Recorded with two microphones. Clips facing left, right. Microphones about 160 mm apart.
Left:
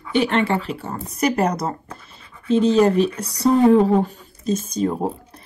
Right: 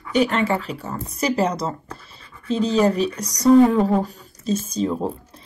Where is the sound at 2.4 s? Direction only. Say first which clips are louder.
Left 3 dB; 35° right (ahead or behind).